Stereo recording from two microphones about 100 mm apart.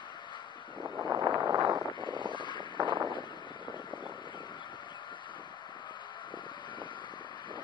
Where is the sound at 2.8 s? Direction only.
50° right (ahead or behind).